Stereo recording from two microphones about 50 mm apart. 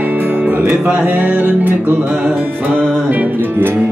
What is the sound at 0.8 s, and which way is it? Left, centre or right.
Music, right.